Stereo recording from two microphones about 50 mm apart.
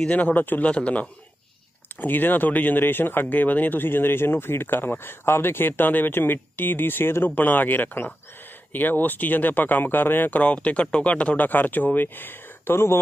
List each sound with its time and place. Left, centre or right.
0.1 s speech: left
0.7 s a man's voice: left
2.0 s speech: left
7.2 s speech: left
10.3 s speech: left